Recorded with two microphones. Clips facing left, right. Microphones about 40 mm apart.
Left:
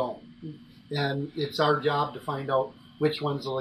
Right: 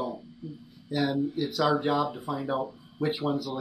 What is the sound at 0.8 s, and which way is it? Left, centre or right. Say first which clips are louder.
Speech: right 2 dB; centre.